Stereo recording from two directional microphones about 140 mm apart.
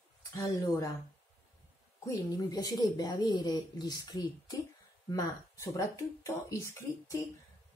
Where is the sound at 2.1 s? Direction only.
25° left (ahead or behind).